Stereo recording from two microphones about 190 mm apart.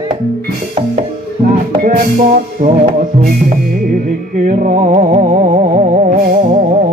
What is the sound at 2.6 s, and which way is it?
Music, 45° right (ahead or behind).